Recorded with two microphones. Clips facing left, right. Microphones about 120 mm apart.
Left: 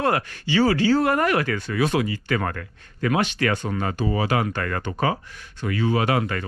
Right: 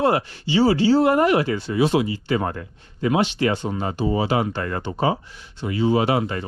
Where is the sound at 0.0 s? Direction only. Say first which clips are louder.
Right 3 dB; 15° right (ahead or behind).